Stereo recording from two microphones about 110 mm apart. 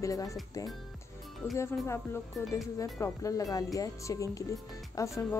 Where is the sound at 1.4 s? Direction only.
25° left (ahead or behind).